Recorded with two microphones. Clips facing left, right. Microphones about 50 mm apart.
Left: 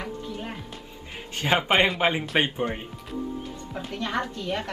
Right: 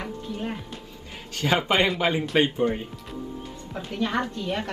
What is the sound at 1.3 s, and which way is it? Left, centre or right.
Speech, left.